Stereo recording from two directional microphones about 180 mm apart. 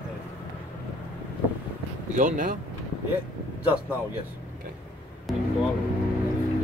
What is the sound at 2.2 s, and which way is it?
Speech, 45° right (ahead or behind).